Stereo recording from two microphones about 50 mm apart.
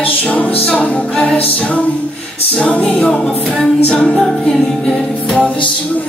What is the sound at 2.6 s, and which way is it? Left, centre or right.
A capella, left.